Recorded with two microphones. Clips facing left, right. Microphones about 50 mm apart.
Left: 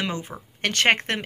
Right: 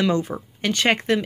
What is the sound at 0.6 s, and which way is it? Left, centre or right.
Speech, left.